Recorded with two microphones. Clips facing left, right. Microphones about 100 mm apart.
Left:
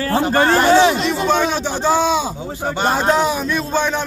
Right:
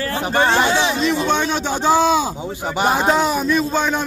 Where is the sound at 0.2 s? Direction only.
15° right (ahead or behind).